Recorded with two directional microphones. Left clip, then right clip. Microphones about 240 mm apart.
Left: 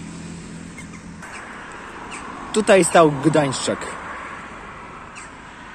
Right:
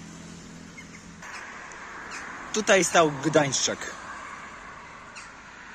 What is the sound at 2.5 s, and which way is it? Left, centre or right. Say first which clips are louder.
Speech: left 7 dB; centre.